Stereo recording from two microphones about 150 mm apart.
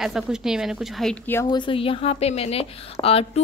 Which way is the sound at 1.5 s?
30° left (ahead or behind).